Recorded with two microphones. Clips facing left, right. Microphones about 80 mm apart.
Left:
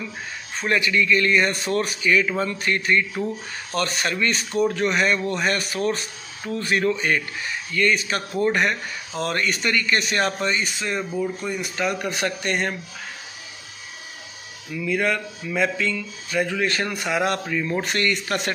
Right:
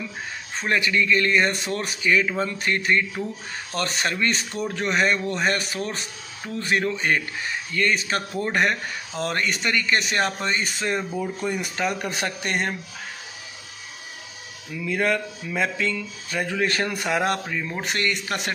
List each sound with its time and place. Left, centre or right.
0.6 s speech: right
9.2 s speech: right
11.8 s speech: right
14.7 s speech: right
17.5 s speech: centre